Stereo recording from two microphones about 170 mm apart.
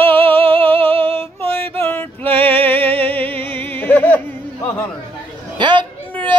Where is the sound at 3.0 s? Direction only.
10° left (ahead or behind).